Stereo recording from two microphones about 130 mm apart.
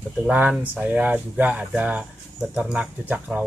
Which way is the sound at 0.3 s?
15° right (ahead or behind).